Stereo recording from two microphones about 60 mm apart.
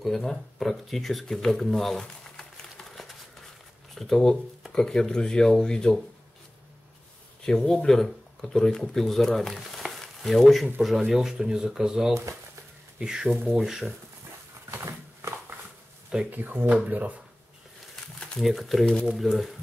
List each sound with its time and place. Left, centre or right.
0.0 s speech: centre
7.4 s speech: centre
13.4 s speech: centre
13.7 s speech: centre
14.7 s a sound: right
16.3 s speech: right
18.0 s crumpling: centre
18.4 s speech: centre